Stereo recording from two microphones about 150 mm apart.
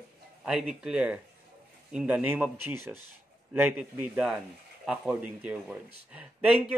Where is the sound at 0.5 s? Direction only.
5° right (ahead or behind).